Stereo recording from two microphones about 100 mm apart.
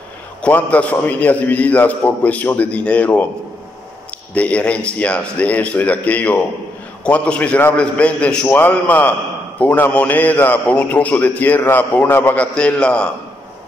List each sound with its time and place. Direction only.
0.4 s a man's voice: 15° left (ahead or behind)
4.3 s a man's voice: 15° left (ahead or behind)